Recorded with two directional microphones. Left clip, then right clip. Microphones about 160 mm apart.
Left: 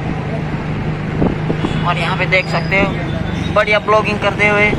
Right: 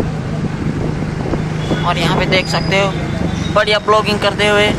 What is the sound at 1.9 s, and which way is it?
Speech, 20° right (ahead or behind).